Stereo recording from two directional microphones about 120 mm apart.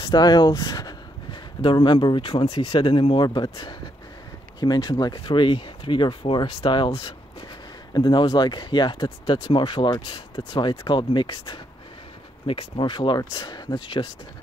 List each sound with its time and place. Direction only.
0.0 s speech: 35° left (ahead or behind)
7.9 s speech: 40° left (ahead or behind)